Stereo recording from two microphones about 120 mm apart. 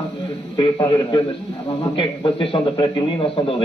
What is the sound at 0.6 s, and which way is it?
A man's voice, 40° left (ahead or behind).